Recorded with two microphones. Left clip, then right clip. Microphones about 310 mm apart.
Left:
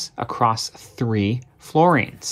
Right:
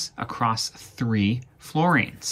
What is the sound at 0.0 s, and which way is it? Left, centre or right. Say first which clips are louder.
Speech: left 5 dB; left.